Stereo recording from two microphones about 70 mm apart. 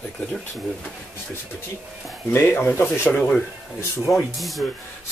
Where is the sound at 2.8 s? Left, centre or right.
Centre.